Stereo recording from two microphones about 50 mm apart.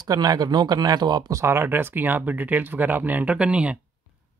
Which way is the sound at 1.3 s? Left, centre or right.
Right.